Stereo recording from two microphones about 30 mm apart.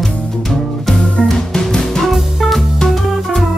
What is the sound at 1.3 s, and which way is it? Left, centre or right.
Music, centre.